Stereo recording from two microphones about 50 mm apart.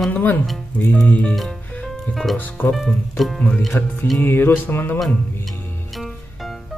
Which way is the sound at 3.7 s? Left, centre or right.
Left.